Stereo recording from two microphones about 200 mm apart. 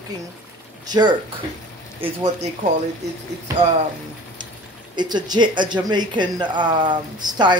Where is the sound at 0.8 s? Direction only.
20° right (ahead or behind).